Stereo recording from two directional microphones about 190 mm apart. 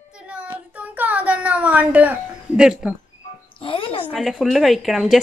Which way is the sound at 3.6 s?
30° left (ahead or behind).